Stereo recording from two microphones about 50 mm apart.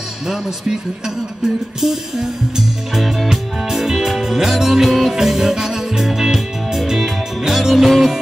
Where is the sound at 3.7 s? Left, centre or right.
Centre.